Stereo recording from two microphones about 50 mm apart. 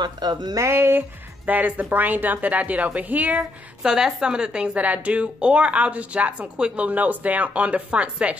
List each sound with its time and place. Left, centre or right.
0.6 s speech: right
3.8 s a woman's voice: centre